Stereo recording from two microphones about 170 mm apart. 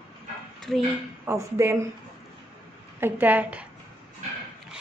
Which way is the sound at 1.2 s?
15° right (ahead or behind).